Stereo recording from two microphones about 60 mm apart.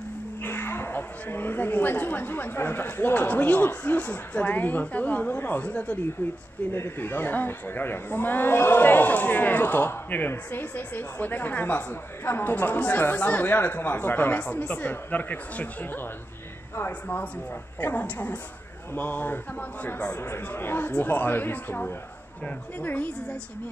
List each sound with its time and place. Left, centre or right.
0.4 s speech: left
6.7 s speech: left